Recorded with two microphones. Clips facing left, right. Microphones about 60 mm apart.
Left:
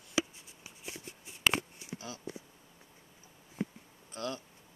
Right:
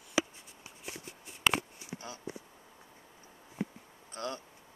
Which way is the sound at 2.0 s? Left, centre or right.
Right.